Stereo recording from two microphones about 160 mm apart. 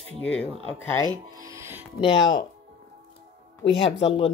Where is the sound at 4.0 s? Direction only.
40° left (ahead or behind).